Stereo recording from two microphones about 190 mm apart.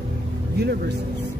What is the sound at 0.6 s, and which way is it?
Speech, 60° right (ahead or behind).